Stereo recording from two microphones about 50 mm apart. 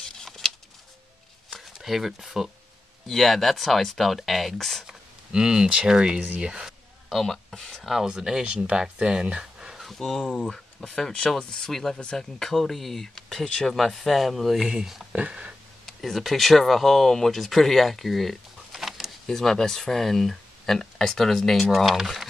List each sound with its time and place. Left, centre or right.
0.0 s a sound: centre
1.6 s speech: centre
4.8 s a sound: centre
5.9 s speech: centre
6.2 s speech: right
7.1 s speech: centre
7.8 s speech: centre
9.8 s speech: centre
14.6 s speech: centre
15.1 s speech: right
15.8 s speech: centre
19.2 s speech: centre